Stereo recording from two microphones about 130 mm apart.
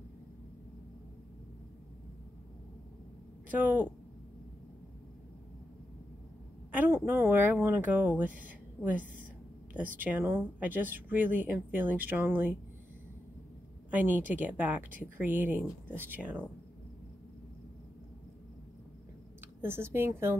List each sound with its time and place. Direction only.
3.4 s speech: 15° right (ahead or behind)
6.7 s a woman's voice: 15° right (ahead or behind)
13.8 s a woman's voice: 15° right (ahead or behind)
19.6 s a woman's voice: 20° right (ahead or behind)